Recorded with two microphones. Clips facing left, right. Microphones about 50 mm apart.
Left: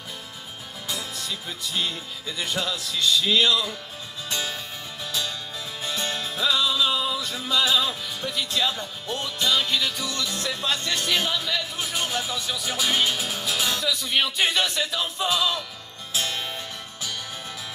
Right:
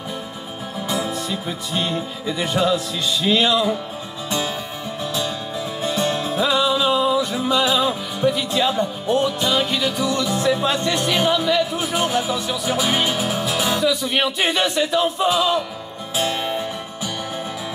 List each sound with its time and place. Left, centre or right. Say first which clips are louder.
0.8 s music: right 8 dB; centre
5.8 s music: right 7 dB; centre